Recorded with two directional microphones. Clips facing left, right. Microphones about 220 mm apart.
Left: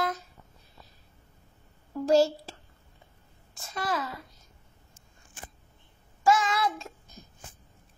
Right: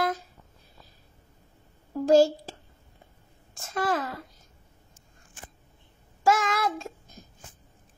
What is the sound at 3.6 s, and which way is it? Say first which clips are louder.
Speech: right 4 dB; 45° right (ahead or behind).